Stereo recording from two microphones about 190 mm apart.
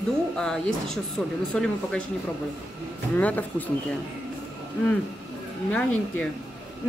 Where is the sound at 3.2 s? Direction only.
10° left (ahead or behind).